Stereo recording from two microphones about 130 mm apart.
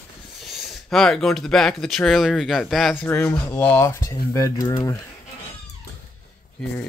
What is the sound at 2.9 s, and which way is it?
Speech, 15° left (ahead or behind).